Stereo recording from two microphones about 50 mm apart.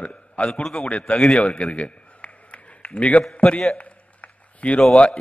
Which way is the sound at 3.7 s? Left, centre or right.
Left.